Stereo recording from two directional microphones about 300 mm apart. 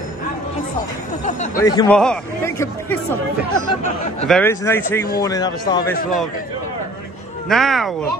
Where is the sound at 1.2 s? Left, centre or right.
Left.